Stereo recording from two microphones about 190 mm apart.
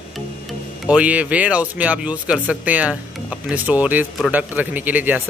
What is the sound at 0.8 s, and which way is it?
Speech, 5° right (ahead or behind).